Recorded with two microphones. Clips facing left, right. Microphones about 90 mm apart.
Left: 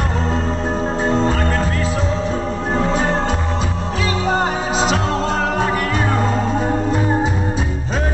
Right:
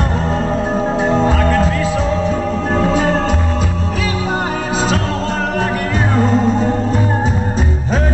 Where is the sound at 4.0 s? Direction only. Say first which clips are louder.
Left 2 dB; 25° left (ahead or behind).